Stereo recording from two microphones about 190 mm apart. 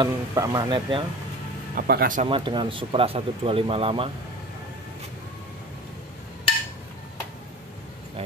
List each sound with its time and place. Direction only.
0.0 s speech: 20° right (ahead or behind)
1.8 s speech: 50° right (ahead or behind)
2.2 s speech: 25° right (ahead or behind)